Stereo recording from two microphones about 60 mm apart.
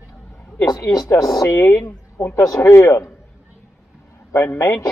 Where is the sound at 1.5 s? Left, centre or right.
Left.